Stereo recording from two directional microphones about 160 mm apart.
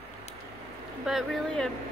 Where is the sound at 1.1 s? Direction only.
Centre (ahead or behind).